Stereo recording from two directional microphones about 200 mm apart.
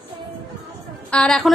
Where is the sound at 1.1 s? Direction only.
5° left (ahead or behind).